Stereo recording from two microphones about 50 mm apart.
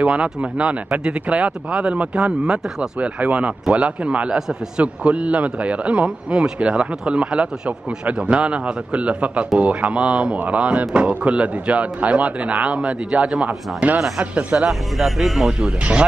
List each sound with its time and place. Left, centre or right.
0.0 s speech: right
4.4 s a man's voice: centre
4.8 s speech: right
6.0 s a man's voice: centre
6.6 s speech: right
14.7 s a man's voice: centre